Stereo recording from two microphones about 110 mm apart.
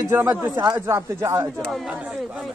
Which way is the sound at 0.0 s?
20° right (ahead or behind).